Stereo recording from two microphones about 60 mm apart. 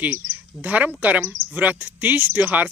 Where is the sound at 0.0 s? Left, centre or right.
Right.